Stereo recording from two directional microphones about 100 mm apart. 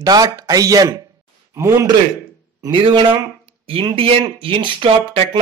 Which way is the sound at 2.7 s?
55° right (ahead or behind).